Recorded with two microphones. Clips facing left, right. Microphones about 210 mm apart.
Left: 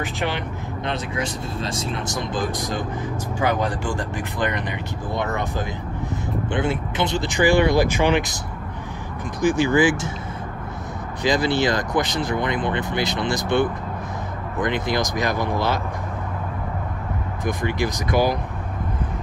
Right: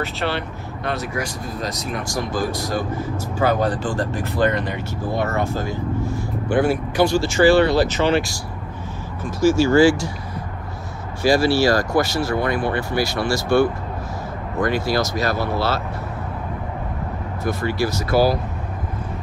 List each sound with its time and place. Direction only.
0.0 s speech: 15° left (ahead or behind)
9.4 s speech: 15° left (ahead or behind)
11.2 s speech: 20° left (ahead or behind)
17.4 s speech: 15° left (ahead or behind)